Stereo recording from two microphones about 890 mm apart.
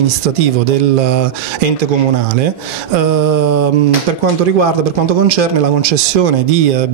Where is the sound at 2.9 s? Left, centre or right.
Right.